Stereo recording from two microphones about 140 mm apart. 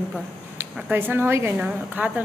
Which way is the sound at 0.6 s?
15° right (ahead or behind).